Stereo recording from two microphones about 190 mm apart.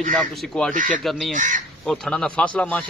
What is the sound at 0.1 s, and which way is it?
A man's voice, 5° left (ahead or behind).